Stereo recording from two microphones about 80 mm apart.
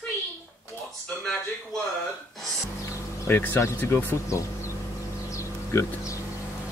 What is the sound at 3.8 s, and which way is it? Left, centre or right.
Speech, left.